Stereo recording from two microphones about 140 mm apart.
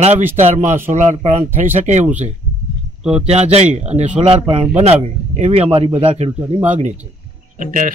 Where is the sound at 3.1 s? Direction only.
50° right (ahead or behind).